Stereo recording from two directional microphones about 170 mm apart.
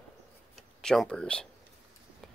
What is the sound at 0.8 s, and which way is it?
Speech, 5° left (ahead or behind).